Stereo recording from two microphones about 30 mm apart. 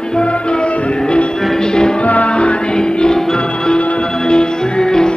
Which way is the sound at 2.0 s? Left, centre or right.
Left.